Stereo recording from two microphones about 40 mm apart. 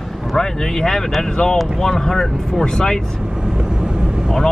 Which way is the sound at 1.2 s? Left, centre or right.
Centre.